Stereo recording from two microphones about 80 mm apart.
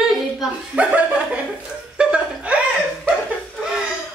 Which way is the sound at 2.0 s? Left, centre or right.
Centre.